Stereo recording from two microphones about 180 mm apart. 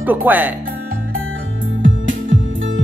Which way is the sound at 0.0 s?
10° right (ahead or behind).